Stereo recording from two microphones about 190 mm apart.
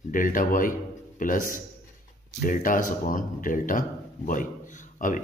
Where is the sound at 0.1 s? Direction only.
45° left (ahead or behind).